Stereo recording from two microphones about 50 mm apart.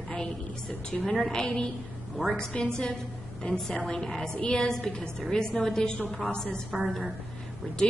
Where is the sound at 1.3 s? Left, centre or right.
Centre.